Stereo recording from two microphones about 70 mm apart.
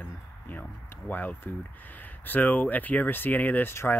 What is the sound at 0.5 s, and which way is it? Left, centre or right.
Speech, left.